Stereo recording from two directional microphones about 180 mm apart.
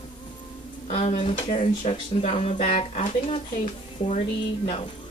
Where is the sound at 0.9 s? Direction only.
35° left (ahead or behind).